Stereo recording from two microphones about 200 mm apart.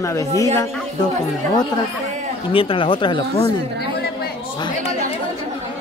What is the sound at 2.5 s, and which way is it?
Speech, 25° left (ahead or behind).